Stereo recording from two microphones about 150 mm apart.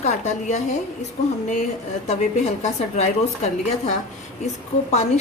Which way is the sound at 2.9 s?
50° left (ahead or behind).